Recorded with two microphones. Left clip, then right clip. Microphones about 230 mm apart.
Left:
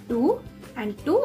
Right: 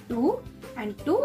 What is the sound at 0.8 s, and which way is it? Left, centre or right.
Speech, centre.